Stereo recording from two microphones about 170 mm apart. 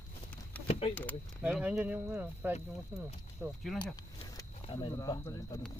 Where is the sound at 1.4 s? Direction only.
5° right (ahead or behind).